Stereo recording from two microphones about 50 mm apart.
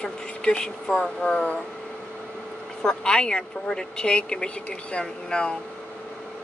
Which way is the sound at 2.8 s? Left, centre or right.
Centre.